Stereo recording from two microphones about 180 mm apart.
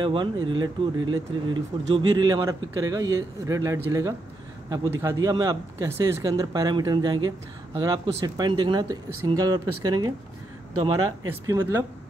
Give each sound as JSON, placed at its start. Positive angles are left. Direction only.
{"t": 0.0, "sound": "speech", "side_deg": -25}
{"t": 11.4, "sound": "speech", "side_deg": -15}